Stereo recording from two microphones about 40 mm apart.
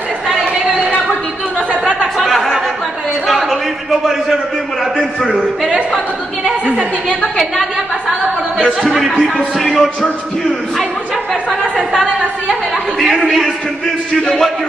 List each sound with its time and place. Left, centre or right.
2.1 s a sound: centre
4.9 s a sound: centre
8.8 s speech: centre
9.1 s speech: left
9.6 s a man's voice: centre
13.2 s a man's voice: centre
14.2 s a man's voice: centre